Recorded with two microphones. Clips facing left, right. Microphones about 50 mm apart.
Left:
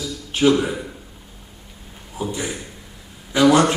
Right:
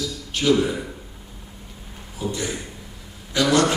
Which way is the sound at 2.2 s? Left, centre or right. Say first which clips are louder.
Left 1 dB; centre.